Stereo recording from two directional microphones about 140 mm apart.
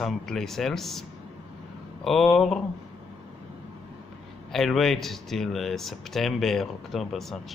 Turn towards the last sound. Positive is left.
turn(degrees=0)  # may be behind; listen again after turning